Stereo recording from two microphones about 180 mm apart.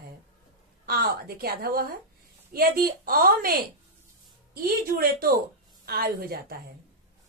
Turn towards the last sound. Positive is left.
turn(degrees=-60)  # may be behind; listen again after turning